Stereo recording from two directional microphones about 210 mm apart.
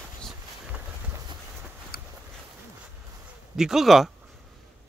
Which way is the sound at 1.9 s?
45° left (ahead or behind).